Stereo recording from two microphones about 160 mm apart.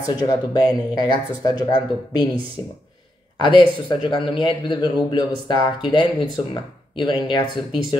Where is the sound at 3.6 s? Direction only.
30° left (ahead or behind).